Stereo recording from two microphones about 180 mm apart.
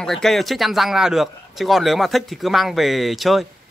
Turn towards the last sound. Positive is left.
turn(degrees=0)  # may be behind; listen again after turning